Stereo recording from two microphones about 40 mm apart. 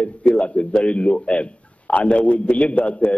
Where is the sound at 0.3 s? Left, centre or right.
Left.